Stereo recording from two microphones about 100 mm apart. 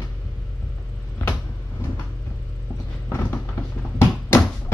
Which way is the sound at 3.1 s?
25° left (ahead or behind).